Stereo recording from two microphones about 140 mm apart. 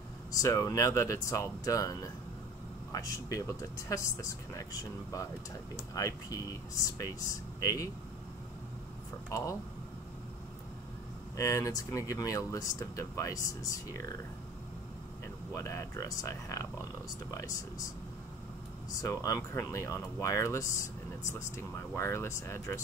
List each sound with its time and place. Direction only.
0.4 s speech: 25° left (ahead or behind)
5.9 s speech: 25° left (ahead or behind)
9.3 s speech: 25° left (ahead or behind)
11.3 s speech: 20° left (ahead or behind)
15.5 s speech: 20° left (ahead or behind)
18.9 s speech: 25° left (ahead or behind)